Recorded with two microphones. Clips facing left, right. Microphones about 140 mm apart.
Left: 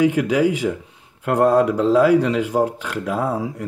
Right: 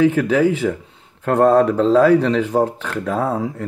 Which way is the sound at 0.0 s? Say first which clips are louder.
Right 2 dB; 15° left (ahead or behind).